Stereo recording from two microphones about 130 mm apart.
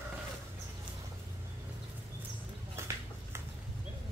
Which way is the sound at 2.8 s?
20° right (ahead or behind).